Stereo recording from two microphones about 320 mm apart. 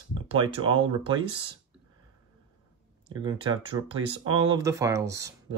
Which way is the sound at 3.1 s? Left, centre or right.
Centre.